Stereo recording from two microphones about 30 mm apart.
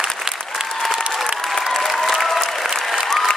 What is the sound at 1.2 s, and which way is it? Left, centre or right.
Applause, centre.